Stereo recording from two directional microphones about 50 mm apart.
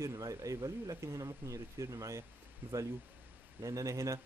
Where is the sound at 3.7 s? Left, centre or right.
Right.